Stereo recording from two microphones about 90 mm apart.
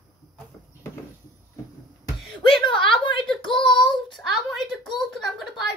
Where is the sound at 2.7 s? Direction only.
70° left (ahead or behind).